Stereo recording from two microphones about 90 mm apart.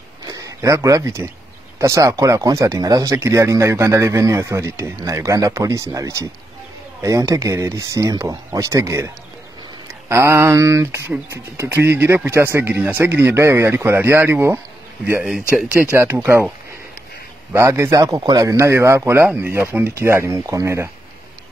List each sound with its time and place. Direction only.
0.3 s speech: 40° right (ahead or behind)
15.9 s speech: 30° right (ahead or behind)
17.5 s speech: 30° right (ahead or behind)